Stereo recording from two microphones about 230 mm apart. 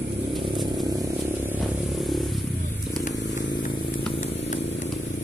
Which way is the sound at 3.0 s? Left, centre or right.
Left.